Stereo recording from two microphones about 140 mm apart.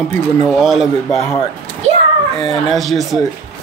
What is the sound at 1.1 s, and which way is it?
Speech, 20° left (ahead or behind).